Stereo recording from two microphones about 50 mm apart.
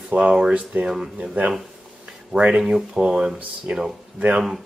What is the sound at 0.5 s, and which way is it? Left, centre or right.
Speech, right.